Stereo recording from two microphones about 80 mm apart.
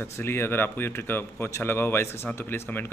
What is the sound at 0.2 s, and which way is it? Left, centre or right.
Speech, left.